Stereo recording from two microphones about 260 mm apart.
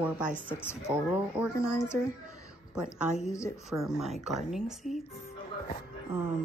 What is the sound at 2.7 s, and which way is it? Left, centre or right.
Speech, centre.